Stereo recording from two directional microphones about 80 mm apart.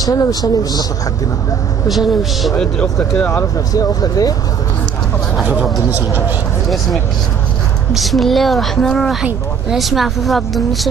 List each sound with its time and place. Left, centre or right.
0.0 s speech: left
1.9 s speech: centre
3.7 s speech: left
5.4 s speech: centre
7.9 s speech: centre